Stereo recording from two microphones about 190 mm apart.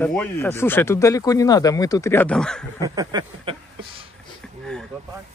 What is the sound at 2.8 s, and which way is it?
Speech, 20° right (ahead or behind).